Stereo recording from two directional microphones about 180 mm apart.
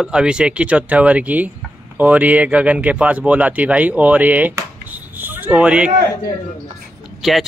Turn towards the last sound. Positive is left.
turn(degrees=0)  # may be behind; listen again after turning